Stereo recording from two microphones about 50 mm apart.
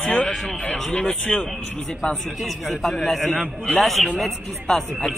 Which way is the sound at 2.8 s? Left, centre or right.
Centre.